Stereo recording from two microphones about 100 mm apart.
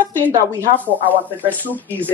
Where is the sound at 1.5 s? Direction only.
15° left (ahead or behind).